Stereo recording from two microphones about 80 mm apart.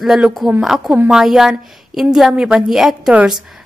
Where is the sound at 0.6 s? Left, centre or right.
Centre.